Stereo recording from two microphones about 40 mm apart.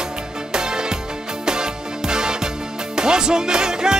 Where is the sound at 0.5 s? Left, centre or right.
Centre.